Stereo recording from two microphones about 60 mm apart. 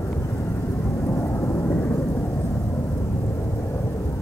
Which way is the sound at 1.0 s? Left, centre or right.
Left.